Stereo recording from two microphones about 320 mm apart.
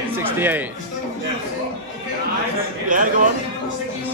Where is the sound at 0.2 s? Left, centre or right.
Centre.